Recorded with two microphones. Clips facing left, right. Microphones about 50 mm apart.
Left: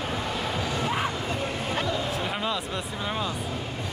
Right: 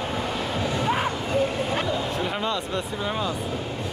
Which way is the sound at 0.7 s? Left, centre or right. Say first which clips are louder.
Right 4 dB; centre.